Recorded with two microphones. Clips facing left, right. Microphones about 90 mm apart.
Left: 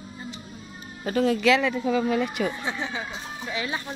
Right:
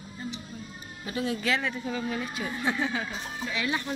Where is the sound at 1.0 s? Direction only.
65° left (ahead or behind); by 1.6 s 80° left.